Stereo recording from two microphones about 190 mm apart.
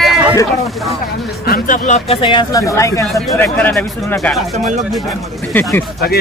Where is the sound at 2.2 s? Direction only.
20° left (ahead or behind); by 4.4 s 5° left (ahead or behind).